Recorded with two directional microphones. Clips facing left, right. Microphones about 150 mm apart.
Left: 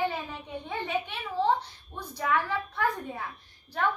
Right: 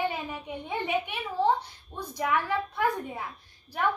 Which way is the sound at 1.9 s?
15° right (ahead or behind).